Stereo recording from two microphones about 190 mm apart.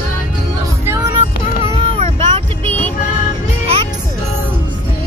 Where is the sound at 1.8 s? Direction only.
30° right (ahead or behind).